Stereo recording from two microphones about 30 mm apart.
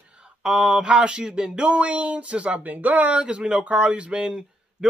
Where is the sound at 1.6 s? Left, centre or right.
Right.